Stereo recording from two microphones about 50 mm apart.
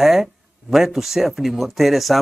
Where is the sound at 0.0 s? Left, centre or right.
Centre.